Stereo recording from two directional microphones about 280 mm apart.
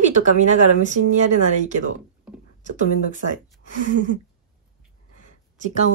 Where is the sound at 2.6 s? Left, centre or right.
Right.